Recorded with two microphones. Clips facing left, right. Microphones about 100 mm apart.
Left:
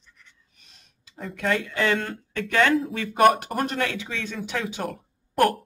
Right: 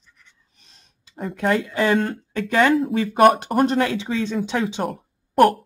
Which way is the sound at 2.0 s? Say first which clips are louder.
Right 5 dB; 30° right (ahead or behind).